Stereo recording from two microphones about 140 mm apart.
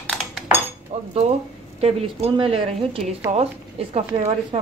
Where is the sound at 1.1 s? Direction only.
50° right (ahead or behind).